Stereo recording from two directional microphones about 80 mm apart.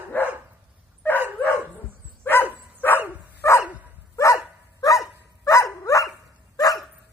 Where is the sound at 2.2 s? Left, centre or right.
Left.